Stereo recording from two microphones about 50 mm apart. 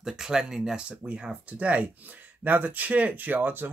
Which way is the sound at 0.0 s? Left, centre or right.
Centre.